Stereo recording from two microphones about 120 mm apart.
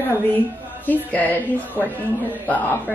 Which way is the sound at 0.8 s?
15° left (ahead or behind).